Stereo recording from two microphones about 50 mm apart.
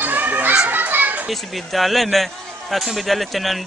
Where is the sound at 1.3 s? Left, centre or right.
Centre.